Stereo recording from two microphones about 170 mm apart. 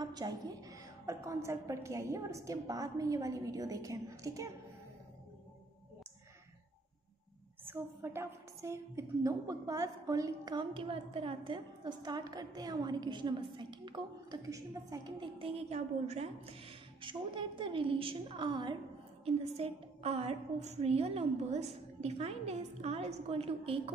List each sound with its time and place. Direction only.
0.0 s a woman's voice: 25° right (ahead or behind)
7.6 s a woman's voice: 15° right (ahead or behind); by 23.8 s 35° right (ahead or behind)